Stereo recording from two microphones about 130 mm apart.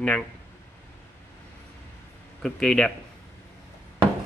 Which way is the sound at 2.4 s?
5° left (ahead or behind).